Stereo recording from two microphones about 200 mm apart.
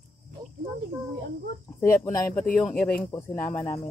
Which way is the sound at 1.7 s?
15° left (ahead or behind).